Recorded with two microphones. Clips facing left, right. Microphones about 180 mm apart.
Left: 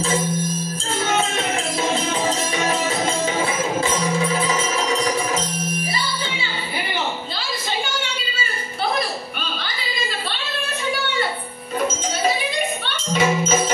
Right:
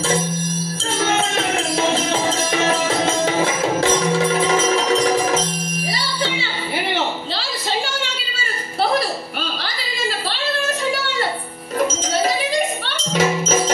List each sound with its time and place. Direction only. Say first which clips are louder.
3.8 s music: right 4 dB; 90° right
5.9 s music: right 3 dB; 85° right
12.8 s music: right 1 dB; 85° right